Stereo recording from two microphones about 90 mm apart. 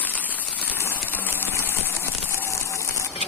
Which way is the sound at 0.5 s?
25° left (ahead or behind).